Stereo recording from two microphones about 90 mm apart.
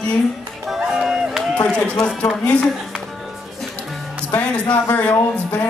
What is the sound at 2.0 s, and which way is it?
Speech, 10° left (ahead or behind).